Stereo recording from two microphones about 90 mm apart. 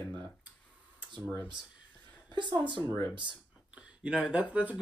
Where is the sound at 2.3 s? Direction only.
60° right (ahead or behind).